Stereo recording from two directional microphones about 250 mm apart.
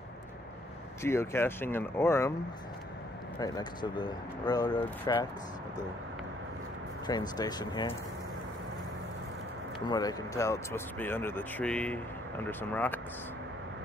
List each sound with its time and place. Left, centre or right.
1.0 s speech: centre
3.3 s speech: centre
7.1 s speech: centre
9.8 s speech: centre